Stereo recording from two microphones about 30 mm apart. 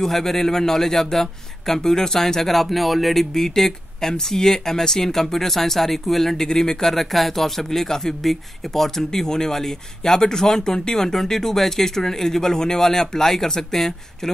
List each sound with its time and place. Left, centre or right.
0.0 s speech: centre
6.3 s speech: centre
6.8 s speech: centre